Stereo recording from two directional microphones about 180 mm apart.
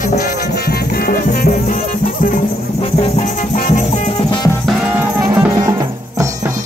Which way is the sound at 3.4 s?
45° left (ahead or behind).